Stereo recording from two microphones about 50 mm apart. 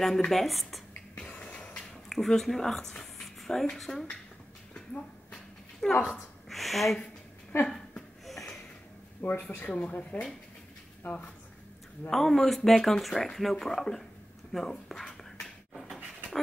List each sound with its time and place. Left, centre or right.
0.0 s speech: centre
1.3 s a sound: left
1.8 s speech: centre
5.8 s speech: centre
6.1 s a sound: centre
9.2 s speech: left
9.7 s speech: left
11.0 s speech: left
12.1 s speech: centre